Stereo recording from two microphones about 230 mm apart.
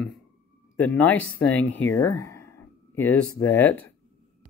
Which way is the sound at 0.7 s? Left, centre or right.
Centre.